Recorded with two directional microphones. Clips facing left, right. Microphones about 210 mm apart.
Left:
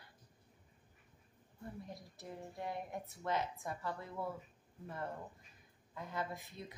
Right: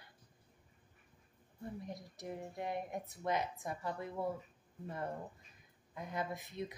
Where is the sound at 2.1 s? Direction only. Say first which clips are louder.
Right 4 dB; 15° right (ahead or behind).